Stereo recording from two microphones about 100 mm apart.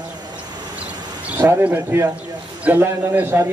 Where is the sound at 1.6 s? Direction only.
20° right (ahead or behind).